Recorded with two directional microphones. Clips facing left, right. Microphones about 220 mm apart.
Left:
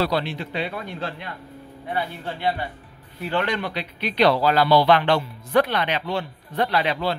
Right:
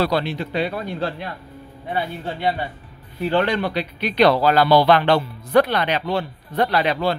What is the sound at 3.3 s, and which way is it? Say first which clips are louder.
Speech: right 5 dB; 30° right (ahead or behind).